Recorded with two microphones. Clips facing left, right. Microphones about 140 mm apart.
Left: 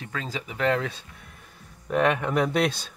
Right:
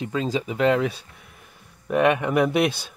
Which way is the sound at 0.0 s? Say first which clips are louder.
Right 9 dB; 20° right (ahead or behind).